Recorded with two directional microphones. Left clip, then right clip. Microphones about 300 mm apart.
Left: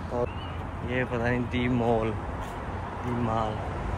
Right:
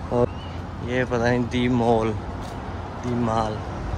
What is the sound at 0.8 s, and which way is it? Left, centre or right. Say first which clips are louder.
Speech: right 6 dB; centre.